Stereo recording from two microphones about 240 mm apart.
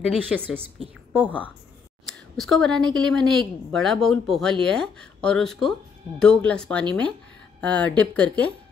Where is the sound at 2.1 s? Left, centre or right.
Centre.